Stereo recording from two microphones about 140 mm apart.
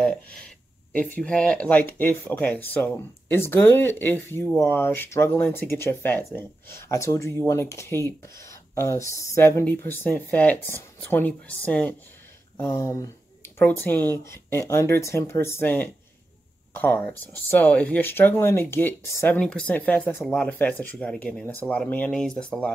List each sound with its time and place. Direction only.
0.0 s a sound: 5° left (ahead or behind)
0.9 s speech: 10° left (ahead or behind)
12.5 s speech: 20° left (ahead or behind)